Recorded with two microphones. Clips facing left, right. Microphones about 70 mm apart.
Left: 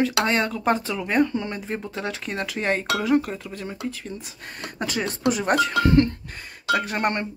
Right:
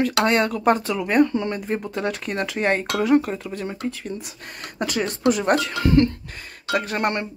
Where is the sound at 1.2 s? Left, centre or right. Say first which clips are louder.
Right 4 dB; centre.